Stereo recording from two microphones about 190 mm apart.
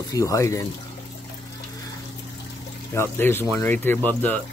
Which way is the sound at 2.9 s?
10° left (ahead or behind).